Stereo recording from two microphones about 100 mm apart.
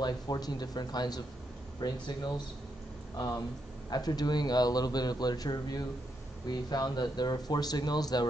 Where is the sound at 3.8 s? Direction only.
40° left (ahead or behind).